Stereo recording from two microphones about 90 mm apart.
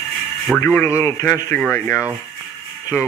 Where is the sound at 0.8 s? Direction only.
30° left (ahead or behind).